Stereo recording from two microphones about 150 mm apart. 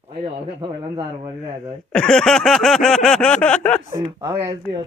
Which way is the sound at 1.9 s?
5° left (ahead or behind).